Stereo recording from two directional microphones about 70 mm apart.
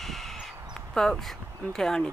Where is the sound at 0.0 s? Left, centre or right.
Centre.